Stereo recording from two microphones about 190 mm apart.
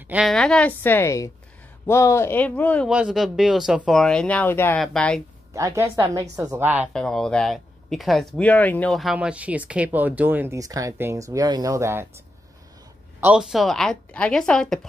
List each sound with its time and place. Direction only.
0.1 s a woman's voice: centre (ahead or behind)
2.9 s speech: 5° right (ahead or behind)
5.5 s speech: 15° right (ahead or behind)
6.9 s speech: 5° left (ahead or behind); by 12.1 s 15° right (ahead or behind)
13.2 s speech: 5° right (ahead or behind)